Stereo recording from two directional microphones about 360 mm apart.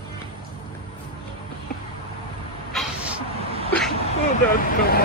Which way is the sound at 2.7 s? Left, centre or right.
Centre.